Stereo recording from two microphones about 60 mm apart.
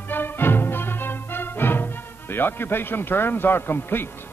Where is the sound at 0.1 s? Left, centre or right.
Left.